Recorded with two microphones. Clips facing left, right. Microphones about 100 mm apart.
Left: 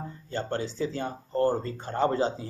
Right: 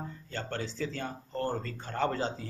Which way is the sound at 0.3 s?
15° left (ahead or behind).